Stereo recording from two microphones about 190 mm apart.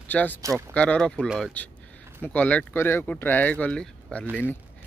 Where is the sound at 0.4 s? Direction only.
15° right (ahead or behind).